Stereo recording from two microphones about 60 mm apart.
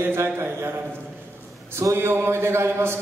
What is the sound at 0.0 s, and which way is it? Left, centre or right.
Speech, right.